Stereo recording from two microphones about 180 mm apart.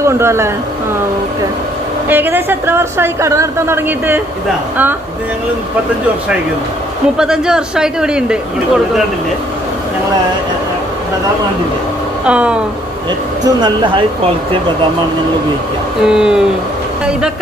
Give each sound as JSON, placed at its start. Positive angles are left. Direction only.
{"t": 0.0, "sound": "a woman's voice", "side_deg": -15}
{"t": 2.0, "sound": "a woman's voice", "side_deg": -10}
{"t": 7.2, "sound": "speech", "side_deg": -5}
{"t": 12.3, "sound": "a woman's voice", "side_deg": -5}
{"t": 13.4, "sound": "speech", "side_deg": -20}
{"t": 16.0, "sound": "speech", "side_deg": -5}